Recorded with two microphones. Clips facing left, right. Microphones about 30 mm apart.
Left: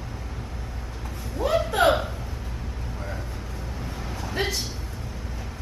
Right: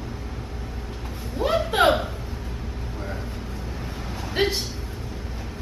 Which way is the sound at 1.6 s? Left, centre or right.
Centre.